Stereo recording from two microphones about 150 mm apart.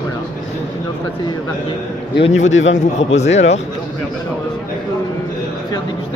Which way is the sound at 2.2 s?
50° left (ahead or behind).